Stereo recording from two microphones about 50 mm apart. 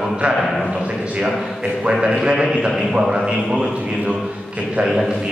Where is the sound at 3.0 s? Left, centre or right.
Centre.